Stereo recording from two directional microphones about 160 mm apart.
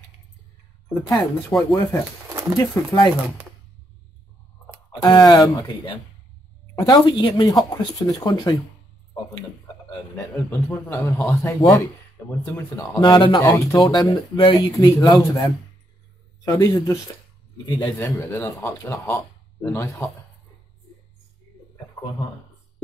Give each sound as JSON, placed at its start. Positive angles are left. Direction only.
{"t": 1.1, "sound": "speech", "side_deg": 0}
{"t": 2.5, "sound": "speech", "side_deg": 20}
{"t": 5.0, "sound": "speech", "side_deg": 25}
{"t": 10.1, "sound": "speech", "side_deg": 15}
{"t": 16.4, "sound": "speech", "side_deg": 20}